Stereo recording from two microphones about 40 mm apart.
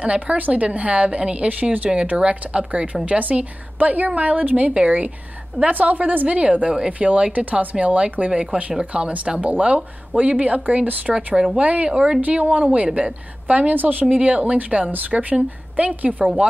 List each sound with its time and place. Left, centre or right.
0.0 s a woman's voice: right
11.1 s speech: centre
11.5 s a woman's voice: right
11.9 s a woman's voice: right
12.2 s a woman's voice: right
13.7 s speech: right
14.1 s a woman's voice: right